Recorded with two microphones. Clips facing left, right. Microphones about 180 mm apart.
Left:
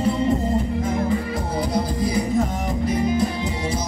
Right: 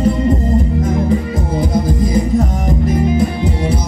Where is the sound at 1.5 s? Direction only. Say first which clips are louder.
Right 7 dB; 45° right (ahead or behind).